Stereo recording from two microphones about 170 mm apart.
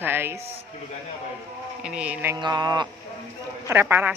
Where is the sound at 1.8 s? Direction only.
5° right (ahead or behind).